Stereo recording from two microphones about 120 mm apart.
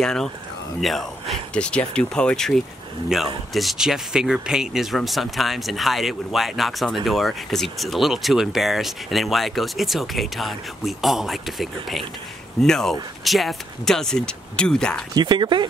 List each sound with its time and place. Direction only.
0.0 s speech: 5° left (ahead or behind)
15.1 s speech: 40° right (ahead or behind)